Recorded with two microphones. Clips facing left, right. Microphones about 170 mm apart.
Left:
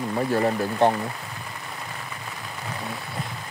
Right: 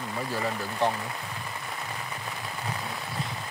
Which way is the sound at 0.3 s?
55° left (ahead or behind).